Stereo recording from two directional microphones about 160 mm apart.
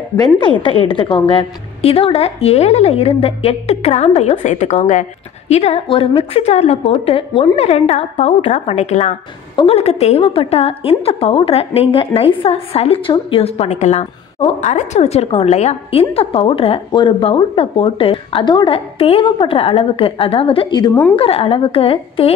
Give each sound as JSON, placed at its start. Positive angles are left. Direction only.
{"t": 0.2, "sound": "a woman's voice", "side_deg": 30}